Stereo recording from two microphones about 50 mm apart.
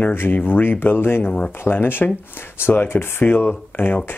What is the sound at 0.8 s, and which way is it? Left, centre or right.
Speech, left.